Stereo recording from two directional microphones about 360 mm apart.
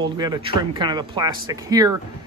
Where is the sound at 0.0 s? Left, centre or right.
Centre.